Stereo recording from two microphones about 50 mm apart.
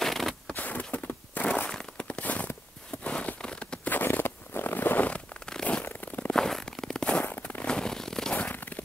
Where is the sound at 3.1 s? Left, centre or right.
Left.